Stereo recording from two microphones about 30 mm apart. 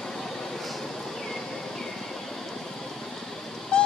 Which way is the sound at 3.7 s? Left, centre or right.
Left.